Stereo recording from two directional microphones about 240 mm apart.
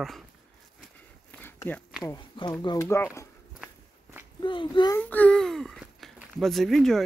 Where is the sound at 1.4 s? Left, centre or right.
Centre.